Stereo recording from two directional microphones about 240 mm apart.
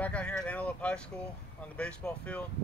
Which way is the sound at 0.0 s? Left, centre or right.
Centre.